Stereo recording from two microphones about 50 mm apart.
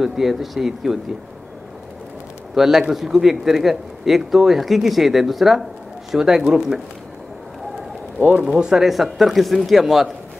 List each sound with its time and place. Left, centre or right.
0.0 s speech: centre
2.5 s a man's voice: centre
8.2 s speech: right
8.5 s speech: centre